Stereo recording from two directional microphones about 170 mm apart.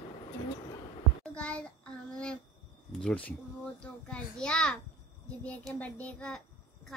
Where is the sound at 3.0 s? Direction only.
5° left (ahead or behind).